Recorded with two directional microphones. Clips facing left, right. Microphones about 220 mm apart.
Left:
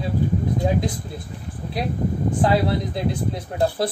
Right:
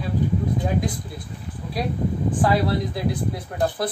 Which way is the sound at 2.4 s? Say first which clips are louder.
Left 1 dB; 25° left (ahead or behind).